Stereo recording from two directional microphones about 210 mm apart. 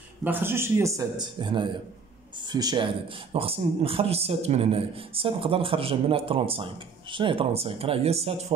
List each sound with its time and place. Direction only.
0.2 s speech: 10° right (ahead or behind); by 8.5 s 30° right (ahead or behind)